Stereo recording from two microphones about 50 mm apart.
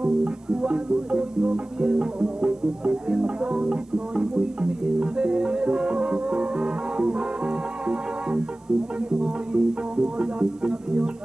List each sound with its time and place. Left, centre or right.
0.0 s music: centre